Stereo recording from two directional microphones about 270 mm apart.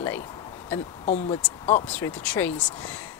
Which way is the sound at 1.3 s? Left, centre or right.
Centre.